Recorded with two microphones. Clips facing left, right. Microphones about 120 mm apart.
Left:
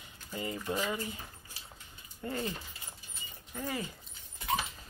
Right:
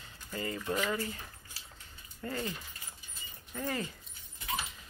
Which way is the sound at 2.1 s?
20° left (ahead or behind).